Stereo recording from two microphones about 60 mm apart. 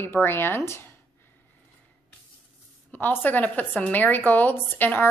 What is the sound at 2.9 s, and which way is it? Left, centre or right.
A woman's voice, left.